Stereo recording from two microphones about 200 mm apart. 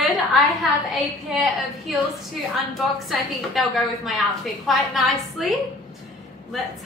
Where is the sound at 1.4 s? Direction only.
Centre (ahead or behind).